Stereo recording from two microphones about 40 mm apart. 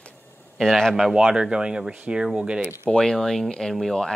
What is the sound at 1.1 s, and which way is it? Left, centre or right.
Speech, centre.